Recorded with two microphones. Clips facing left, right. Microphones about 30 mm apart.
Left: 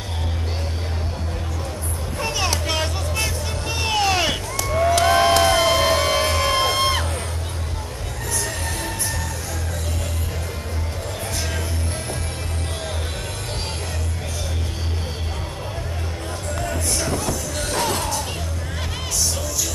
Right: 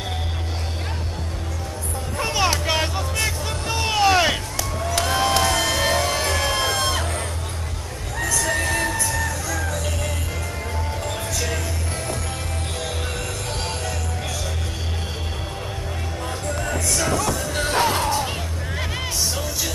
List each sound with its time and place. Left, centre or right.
2.1 s vehicle: centre
5.0 s music: centre
8.2 s music: right
17.1 s music: right
17.6 s music: centre